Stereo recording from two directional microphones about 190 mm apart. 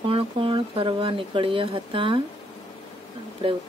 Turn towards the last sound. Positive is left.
turn(degrees=-25)  # may be behind; listen again after turning